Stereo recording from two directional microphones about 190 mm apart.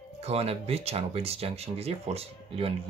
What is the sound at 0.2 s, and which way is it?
Speech, 30° right (ahead or behind).